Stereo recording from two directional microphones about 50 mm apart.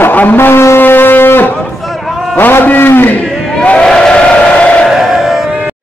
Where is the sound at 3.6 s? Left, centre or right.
Left.